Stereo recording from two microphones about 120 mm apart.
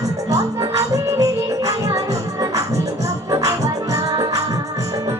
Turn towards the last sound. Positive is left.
turn(degrees=-25)  # may be behind; listen again after turning